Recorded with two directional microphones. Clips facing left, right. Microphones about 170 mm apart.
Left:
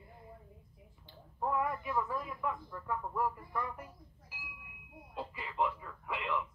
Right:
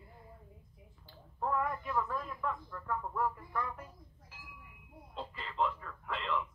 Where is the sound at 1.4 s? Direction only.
10° left (ahead or behind).